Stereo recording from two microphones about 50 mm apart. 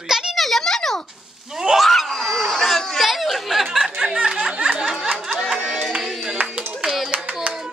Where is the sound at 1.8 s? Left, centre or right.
Centre.